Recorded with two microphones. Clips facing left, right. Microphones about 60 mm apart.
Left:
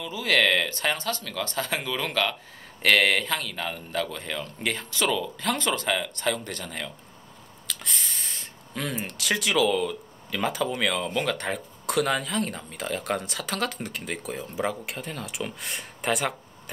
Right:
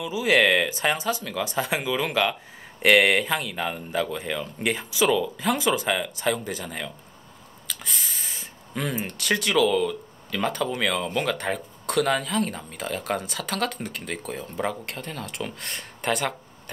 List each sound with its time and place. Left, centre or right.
0.0 s speech: centre